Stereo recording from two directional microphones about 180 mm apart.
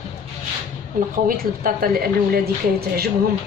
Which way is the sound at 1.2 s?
50° right (ahead or behind).